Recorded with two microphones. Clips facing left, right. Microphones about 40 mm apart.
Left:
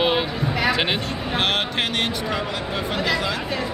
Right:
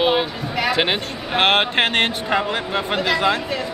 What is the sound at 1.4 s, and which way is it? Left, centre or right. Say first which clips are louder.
Speech: right 7 dB; right.